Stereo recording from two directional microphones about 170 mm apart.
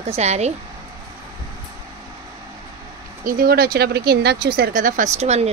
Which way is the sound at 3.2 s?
60° right (ahead or behind).